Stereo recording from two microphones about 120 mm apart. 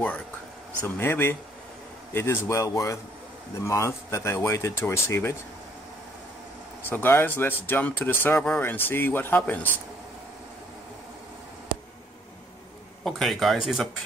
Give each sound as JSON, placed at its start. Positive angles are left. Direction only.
{"t": 0.8, "sound": "speech", "side_deg": 20}
{"t": 6.9, "sound": "speech", "side_deg": 20}
{"t": 13.0, "sound": "speech", "side_deg": 0}